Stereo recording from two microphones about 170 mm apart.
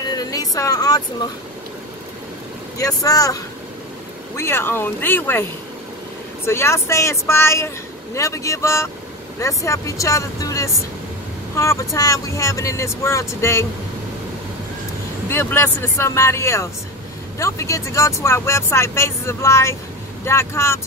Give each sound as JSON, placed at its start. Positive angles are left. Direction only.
{"t": 0.0, "sound": "a sound", "side_deg": 25}
{"t": 2.8, "sound": "speech", "side_deg": 20}
{"t": 4.4, "sound": "speech", "side_deg": 15}
{"t": 15.2, "sound": "speech", "side_deg": 15}